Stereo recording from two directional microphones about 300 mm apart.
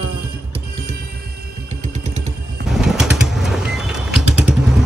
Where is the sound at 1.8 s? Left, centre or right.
Right.